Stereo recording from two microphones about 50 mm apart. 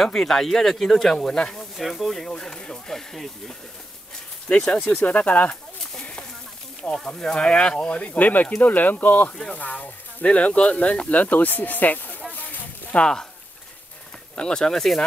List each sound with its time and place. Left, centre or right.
0.0 s speech: centre
1.8 s speech: centre
2.3 s speech: centre
4.8 s speech: left
5.9 s a sound: centre
7.1 s speech: centre; by 9.3 s left
9.3 s speech: centre
9.6 s speech: left
12.4 s a sound: left
12.9 s speech: centre
14.3 s speech: centre